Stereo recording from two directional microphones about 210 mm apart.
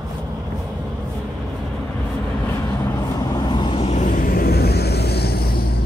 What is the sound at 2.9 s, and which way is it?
Vehicle, 15° left (ahead or behind).